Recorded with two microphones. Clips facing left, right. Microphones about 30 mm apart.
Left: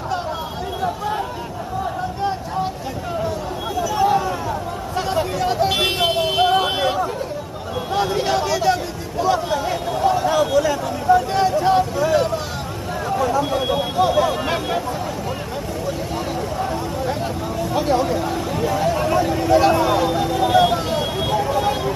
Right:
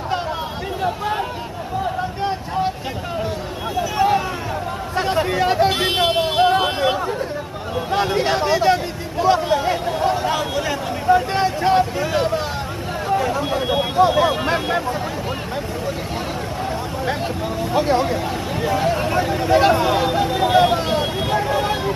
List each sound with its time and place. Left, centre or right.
3.9 s a sound: right
4.9 s hubbub: right
5.9 s vehicle: centre
6.3 s vehicle: right
7.9 s speech: right
13.4 s speech: centre; by 14.6 s right
17.7 s speech: right
19.5 s speech: right
20.0 s vehicle: right